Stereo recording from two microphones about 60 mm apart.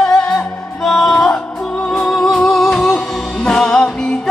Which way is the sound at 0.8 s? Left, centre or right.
Centre.